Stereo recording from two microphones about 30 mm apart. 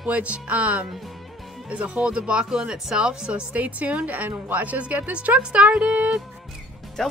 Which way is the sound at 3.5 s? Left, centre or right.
Right.